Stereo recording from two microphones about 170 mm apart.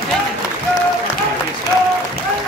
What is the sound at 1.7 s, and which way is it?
Applause, 20° left (ahead or behind).